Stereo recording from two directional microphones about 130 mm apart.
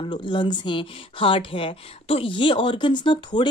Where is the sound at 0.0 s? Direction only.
40° left (ahead or behind).